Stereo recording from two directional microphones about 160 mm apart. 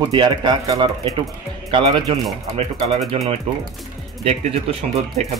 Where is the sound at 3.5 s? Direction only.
35° right (ahead or behind).